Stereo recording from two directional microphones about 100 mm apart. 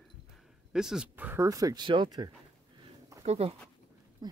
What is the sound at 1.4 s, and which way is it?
Speech, 35° right (ahead or behind).